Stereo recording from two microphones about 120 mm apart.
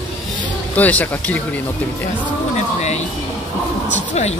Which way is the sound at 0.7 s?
10° left (ahead or behind).